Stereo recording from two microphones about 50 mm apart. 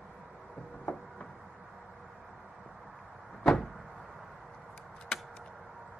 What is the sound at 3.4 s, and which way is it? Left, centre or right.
Vehicle, centre.